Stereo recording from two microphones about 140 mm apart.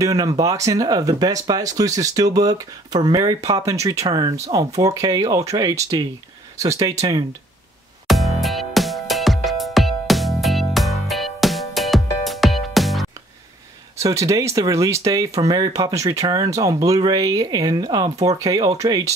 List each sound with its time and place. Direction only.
0.0 s speech: 25° right (ahead or behind)
8.1 s music: centre (ahead or behind)
13.9 s speech: 25° right (ahead or behind)